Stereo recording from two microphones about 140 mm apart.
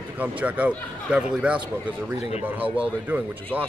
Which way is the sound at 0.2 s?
10° right (ahead or behind).